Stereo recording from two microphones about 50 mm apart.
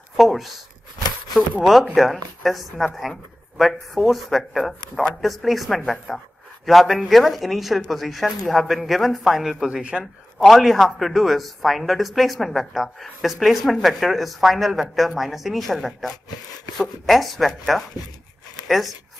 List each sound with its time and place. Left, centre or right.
0.2 s a woman's voice: centre
2.0 s a woman's voice: centre
9.7 s speech: centre
10.4 s a woman's voice: centre